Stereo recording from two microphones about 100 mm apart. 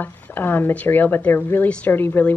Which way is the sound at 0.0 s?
20° left (ahead or behind).